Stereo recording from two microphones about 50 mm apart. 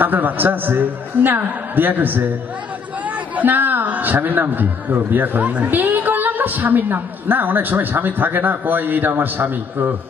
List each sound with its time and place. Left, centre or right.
0.0 s a woman's voice: right
3.3 s a man's voice: right